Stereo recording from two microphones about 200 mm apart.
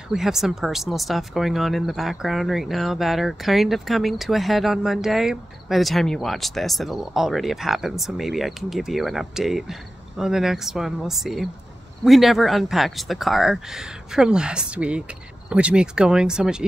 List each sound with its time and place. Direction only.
0.1 s speech: centre (ahead or behind)